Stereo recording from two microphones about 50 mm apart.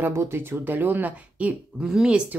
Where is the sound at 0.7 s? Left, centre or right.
Right.